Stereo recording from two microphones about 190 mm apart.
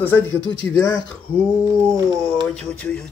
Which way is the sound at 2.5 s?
5° left (ahead or behind).